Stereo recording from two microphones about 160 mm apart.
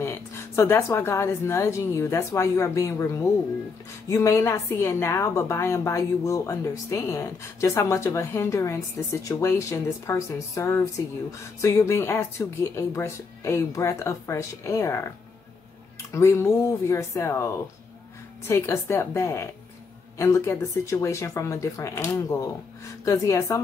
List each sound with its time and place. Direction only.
0.0 s a woman's voice: 15° left (ahead or behind)
16.1 s a woman's voice: 15° left (ahead or behind)
18.5 s a woman's voice: 15° left (ahead or behind)